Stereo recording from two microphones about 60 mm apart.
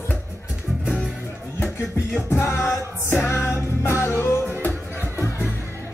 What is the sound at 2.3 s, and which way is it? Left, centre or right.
Music, left.